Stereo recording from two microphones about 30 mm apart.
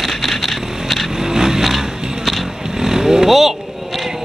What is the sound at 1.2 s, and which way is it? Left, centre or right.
Vehicle, centre.